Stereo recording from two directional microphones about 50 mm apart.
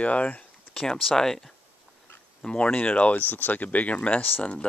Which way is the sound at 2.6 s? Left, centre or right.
Left.